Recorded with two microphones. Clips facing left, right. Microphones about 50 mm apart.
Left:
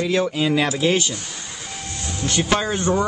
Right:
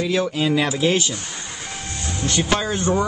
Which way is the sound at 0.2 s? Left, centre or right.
Centre.